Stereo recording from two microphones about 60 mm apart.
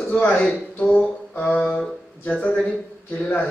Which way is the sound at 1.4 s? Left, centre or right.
Left.